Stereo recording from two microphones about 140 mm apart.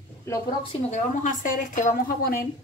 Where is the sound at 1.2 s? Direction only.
65° left (ahead or behind).